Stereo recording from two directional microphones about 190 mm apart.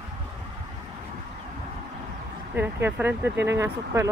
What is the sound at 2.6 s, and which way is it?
Speech, 10° right (ahead or behind).